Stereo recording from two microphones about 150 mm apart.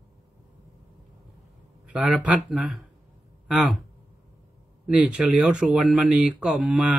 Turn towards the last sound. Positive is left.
turn(degrees=-5)  # may be behind; listen again after turning